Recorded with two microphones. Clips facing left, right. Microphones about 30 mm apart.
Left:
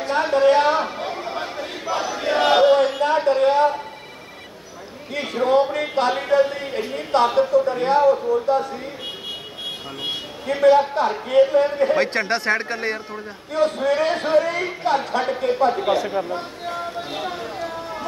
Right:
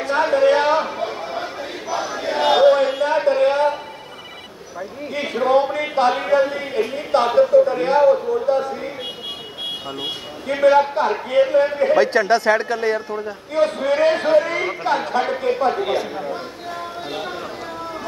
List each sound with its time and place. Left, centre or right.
0.1 s chatter: centre
3.2 s a sound: centre
5.1 s a sound: centre
6.3 s a man's voice: centre
10.6 s a man's voice: centre
12.3 s a woman's voice: left
13.5 s a man's voice: centre